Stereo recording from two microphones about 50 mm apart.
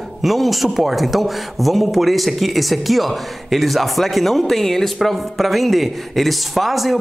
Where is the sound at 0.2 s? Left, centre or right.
Centre.